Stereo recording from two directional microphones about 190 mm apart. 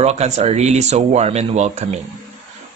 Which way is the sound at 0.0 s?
35° right (ahead or behind).